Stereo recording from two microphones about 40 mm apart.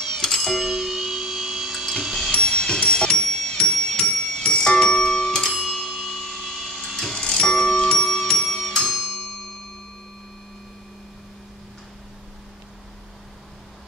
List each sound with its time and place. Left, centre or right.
0.2 s music: centre
0.6 s music: centre
2.3 s music: centre
4.0 s clock: centre
4.5 s music: centre
5.7 s bell: centre
6.0 s vacuum cleaner: centre
7.2 s music: left